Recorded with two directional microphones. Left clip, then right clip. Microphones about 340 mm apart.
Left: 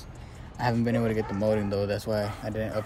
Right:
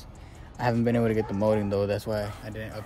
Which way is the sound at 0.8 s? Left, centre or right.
Right.